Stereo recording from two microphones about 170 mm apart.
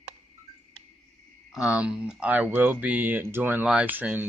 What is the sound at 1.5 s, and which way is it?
Speech, 5° right (ahead or behind).